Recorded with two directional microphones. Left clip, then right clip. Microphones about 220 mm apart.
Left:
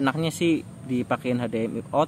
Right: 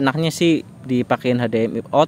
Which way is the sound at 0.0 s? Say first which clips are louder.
Right 6 dB; 30° right (ahead or behind).